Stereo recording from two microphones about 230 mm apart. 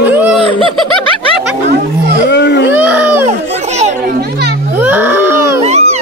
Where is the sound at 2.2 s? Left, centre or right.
Left.